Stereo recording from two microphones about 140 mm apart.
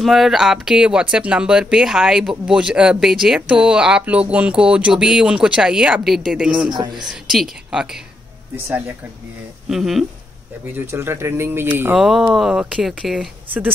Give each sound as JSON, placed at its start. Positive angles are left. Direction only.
{"t": 0.0, "sound": "speech", "side_deg": 0}
{"t": 6.7, "sound": "speech", "side_deg": -30}
{"t": 7.0, "sound": "speech", "side_deg": 0}
{"t": 9.7, "sound": "speech", "side_deg": 0}
{"t": 10.7, "sound": "speech", "side_deg": -15}